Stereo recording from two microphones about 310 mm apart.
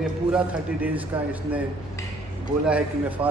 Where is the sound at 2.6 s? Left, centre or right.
Centre.